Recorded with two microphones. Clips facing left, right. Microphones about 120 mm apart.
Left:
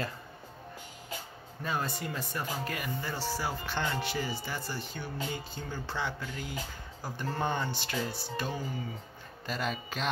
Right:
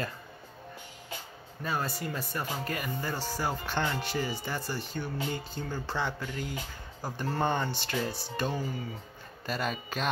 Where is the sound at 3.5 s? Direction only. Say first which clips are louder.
Right 2 dB; 15° right (ahead or behind).